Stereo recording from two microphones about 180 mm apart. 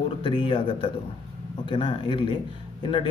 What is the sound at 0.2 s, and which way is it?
A man's voice, 30° left (ahead or behind).